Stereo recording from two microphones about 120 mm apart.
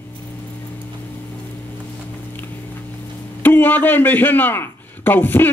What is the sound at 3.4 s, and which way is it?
A man's voice, 15° left (ahead or behind).